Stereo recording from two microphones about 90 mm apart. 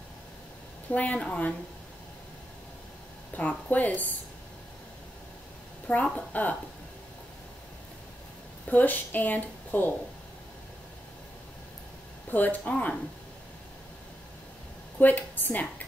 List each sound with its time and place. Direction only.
0.8 s a woman's voice: 15° left (ahead or behind)
3.3 s a woman's voice: 15° left (ahead or behind)
5.9 s a woman's voice: 15° left (ahead or behind)
8.6 s a woman's voice: 20° left (ahead or behind)
12.3 s a woman's voice: 20° left (ahead or behind)
15.0 s a woman's voice: 20° left (ahead or behind)